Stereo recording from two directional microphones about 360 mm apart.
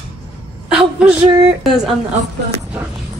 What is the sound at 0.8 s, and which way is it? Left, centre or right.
A woman's voice, centre.